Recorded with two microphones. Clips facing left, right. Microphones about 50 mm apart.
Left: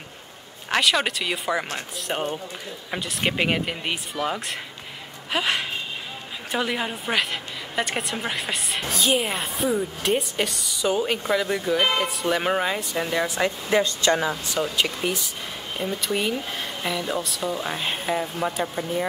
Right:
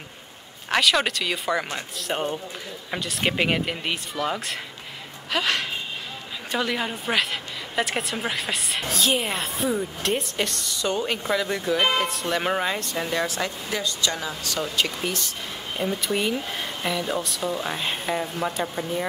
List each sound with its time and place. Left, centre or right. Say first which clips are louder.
0.7 s a woman's voice: even; centre
13.3 s speech: left 6 dB; left
14.3 s speech: left 3 dB; centre
14.8 s a woman's voice: left 1 dB; centre